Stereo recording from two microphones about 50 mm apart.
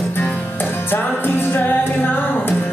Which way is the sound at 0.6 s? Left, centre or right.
Left.